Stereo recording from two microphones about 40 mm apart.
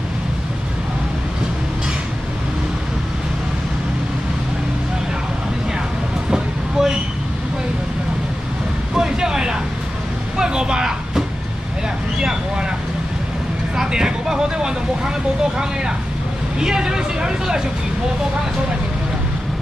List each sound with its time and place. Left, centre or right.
6.3 s vehicle: centre
8.9 s vehicle: centre
13.7 s vehicle: centre
16.5 s vehicle: centre